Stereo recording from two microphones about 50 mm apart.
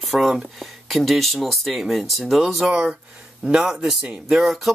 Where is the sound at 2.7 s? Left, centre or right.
Centre.